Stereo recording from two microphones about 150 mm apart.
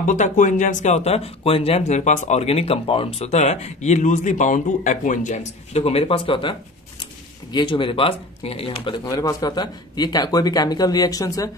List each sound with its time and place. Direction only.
0.0 s speech: 55° left (ahead or behind); by 6.5 s 35° left (ahead or behind)
7.5 s speech: 35° left (ahead or behind)
9.0 s a man's voice: 25° left (ahead or behind)